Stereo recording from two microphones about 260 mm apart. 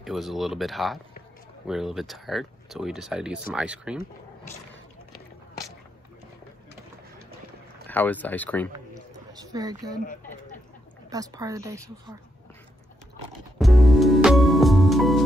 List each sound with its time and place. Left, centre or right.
0.0 s speech: centre
7.9 s speech: centre
8.7 s a sound: centre
10.0 s a sound: left
11.1 s a woman's voice: centre
13.3 s music: centre